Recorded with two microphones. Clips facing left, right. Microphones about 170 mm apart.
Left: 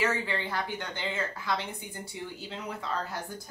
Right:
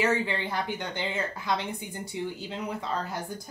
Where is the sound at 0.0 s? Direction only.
20° right (ahead or behind).